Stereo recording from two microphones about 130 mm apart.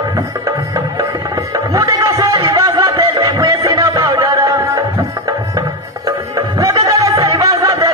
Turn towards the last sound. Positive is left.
turn(degrees=-25)  # may be behind; listen again after turning